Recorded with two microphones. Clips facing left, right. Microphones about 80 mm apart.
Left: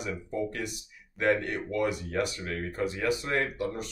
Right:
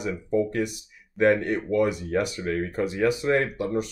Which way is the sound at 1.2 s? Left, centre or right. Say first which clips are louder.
Right 6 dB; right.